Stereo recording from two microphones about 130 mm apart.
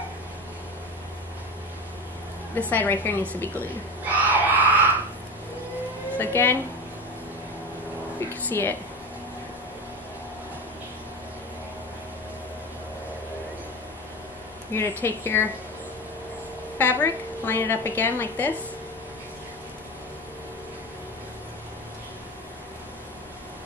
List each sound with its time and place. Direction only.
2.7 s a woman's voice: 15° left (ahead or behind)
4.0 s a sound: 10° right (ahead or behind)
6.1 s speech: 15° left (ahead or behind)
8.3 s a woman's voice: 15° left (ahead or behind)
14.7 s a woman's voice: 20° left (ahead or behind)
16.7 s a woman's voice: 15° left (ahead or behind)